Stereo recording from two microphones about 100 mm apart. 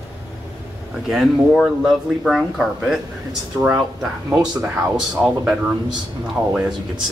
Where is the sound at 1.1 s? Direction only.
5° right (ahead or behind).